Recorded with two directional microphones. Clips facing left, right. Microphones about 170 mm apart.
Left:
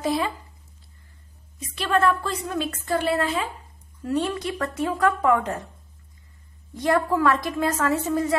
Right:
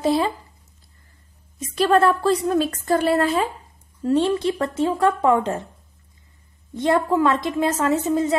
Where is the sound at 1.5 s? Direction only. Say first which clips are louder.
Right 6 dB; 40° right (ahead or behind).